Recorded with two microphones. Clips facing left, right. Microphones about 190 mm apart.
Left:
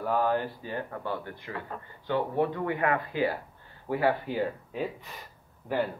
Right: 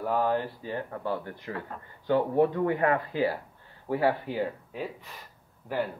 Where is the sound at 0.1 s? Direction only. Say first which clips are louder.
Even; 25° right (ahead or behind).